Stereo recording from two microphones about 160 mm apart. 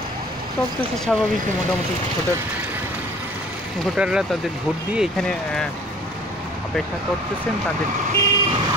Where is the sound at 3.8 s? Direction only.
5° right (ahead or behind).